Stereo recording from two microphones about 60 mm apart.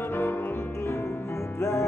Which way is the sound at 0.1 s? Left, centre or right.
Left.